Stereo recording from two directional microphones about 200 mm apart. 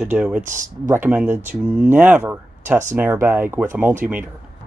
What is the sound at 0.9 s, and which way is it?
Speech, 10° right (ahead or behind).